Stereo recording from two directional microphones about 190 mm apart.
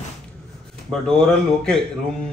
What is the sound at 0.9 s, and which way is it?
Speech, 5° left (ahead or behind).